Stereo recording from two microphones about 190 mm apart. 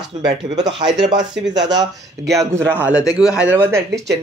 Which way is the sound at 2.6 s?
10° right (ahead or behind).